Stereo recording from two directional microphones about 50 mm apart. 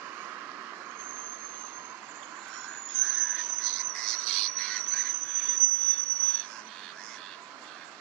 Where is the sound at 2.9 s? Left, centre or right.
Left.